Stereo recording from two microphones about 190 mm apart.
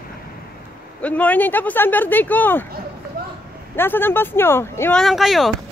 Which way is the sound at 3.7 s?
10° left (ahead or behind).